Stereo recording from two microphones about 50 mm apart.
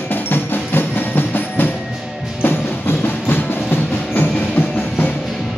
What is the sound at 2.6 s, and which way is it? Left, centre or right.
Music, left.